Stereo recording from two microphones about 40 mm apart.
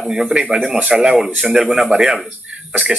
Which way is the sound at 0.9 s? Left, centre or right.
Centre.